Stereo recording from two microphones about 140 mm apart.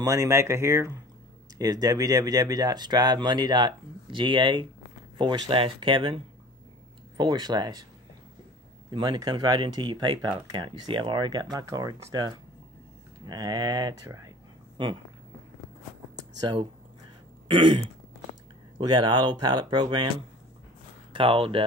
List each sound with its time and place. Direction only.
0.0 s speech: 20° right (ahead or behind)
8.9 s speech: 30° right (ahead or behind)
16.2 s a sound: 30° right (ahead or behind)
17.5 s throat clearing: 35° right (ahead or behind)
18.8 s speech: 30° right (ahead or behind)
21.1 s speech: 40° right (ahead or behind)